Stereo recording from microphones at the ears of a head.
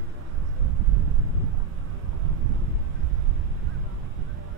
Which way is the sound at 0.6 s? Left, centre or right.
Right.